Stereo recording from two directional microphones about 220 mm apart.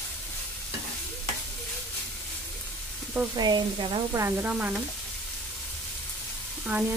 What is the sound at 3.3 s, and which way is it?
Speech, 20° right (ahead or behind).